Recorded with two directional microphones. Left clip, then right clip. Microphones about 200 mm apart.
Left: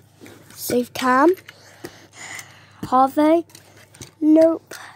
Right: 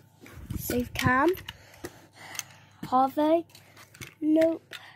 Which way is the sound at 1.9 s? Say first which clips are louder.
Left 6 dB; 15° left (ahead or behind).